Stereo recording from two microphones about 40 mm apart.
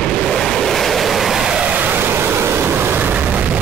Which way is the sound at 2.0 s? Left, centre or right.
Right.